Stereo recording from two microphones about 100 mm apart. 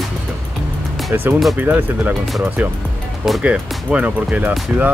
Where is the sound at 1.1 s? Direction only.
20° right (ahead or behind).